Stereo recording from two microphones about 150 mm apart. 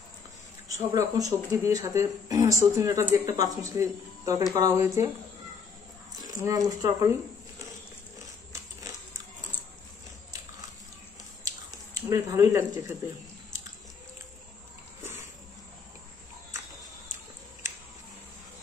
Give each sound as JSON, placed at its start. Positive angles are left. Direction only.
{"t": 0.7, "sound": "speech", "side_deg": -25}
{"t": 6.4, "sound": "speech", "side_deg": -25}
{"t": 11.4, "sound": "a sound", "side_deg": -20}